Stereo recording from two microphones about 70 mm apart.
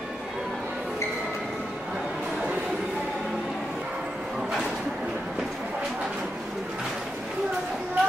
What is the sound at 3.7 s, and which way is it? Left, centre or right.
Bow-wow, centre.